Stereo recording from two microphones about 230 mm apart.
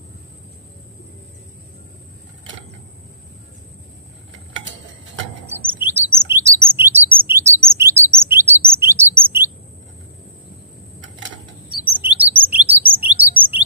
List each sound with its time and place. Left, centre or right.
4.6 s clock: right
5.5 s chirp: centre
11.9 s chirp: centre